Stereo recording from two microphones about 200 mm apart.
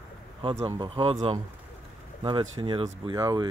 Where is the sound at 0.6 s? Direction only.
25° right (ahead or behind).